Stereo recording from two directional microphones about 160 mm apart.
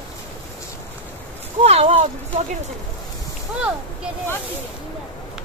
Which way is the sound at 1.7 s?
40° right (ahead or behind).